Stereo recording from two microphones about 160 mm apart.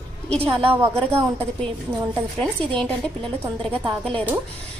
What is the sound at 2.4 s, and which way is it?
Speech, 5° left (ahead or behind).